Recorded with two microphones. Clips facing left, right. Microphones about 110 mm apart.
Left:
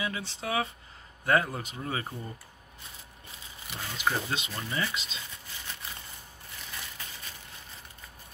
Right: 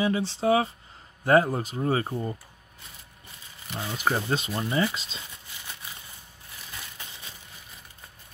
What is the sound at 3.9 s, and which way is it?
Speech, 40° right (ahead or behind).